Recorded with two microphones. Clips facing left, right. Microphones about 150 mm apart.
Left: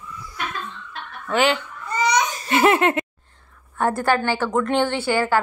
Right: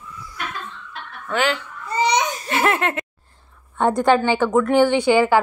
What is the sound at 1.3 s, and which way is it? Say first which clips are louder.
Speech: left 2 dB; centre (ahead or behind).